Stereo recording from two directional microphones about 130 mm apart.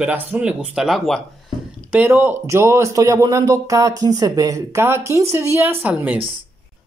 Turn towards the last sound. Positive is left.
turn(degrees=-10)  # may be behind; listen again after turning